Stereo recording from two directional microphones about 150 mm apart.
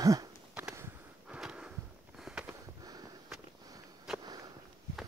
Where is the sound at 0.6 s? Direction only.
10° right (ahead or behind).